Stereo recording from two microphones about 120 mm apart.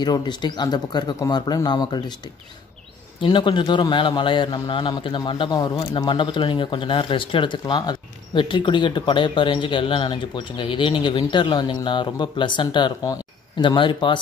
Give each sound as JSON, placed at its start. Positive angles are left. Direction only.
{"t": 0.0, "sound": "a man's voice", "side_deg": 35}